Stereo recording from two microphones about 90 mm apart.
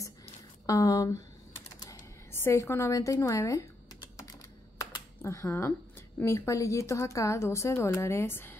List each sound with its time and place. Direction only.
0.7 s a woman's voice: 40° left (ahead or behind)
2.3 s speech: 30° left (ahead or behind)
4.2 s typing: 45° left (ahead or behind)
5.2 s a woman's voice: 30° left (ahead or behind)